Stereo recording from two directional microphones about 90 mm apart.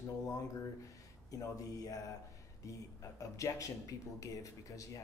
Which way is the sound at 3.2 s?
40° left (ahead or behind).